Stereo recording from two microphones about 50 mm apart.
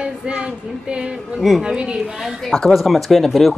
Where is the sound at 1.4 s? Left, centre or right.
Centre.